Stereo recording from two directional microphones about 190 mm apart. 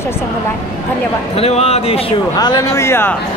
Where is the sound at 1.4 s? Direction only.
30° left (ahead or behind).